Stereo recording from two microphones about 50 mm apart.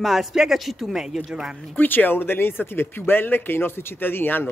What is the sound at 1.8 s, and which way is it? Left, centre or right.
Speech, left.